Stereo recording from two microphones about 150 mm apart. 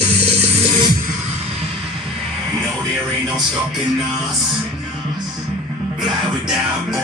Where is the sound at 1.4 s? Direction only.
40° right (ahead or behind).